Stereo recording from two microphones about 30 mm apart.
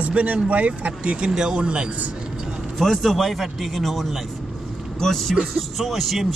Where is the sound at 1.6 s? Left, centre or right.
Right.